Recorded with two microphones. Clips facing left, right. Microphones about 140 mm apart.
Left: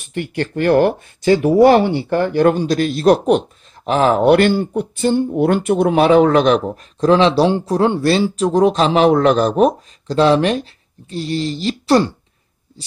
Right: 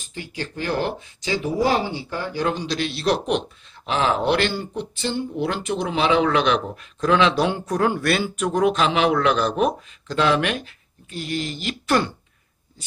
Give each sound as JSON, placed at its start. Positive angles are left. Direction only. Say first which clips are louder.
{"t": 0.0, "sound": "speech", "louder": "left 10 dB", "side_deg": 60}